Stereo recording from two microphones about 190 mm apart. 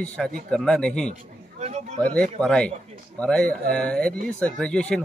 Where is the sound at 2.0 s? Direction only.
5° left (ahead or behind).